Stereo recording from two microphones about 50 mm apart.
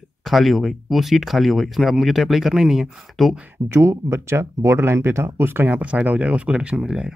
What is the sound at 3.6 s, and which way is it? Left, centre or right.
Speech, right.